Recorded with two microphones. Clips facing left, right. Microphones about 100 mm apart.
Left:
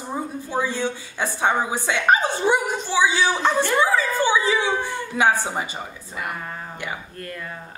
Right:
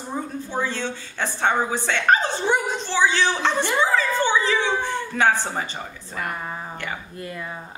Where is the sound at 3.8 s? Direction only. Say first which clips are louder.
Left 1 dB; 10° left (ahead or behind).